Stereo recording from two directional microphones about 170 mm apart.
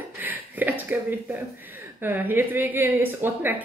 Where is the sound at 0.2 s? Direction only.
10° right (ahead or behind).